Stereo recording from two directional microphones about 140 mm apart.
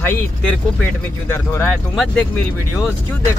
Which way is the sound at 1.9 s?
5° left (ahead or behind).